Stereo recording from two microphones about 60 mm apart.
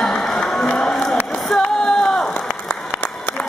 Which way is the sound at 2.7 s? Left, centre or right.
Left.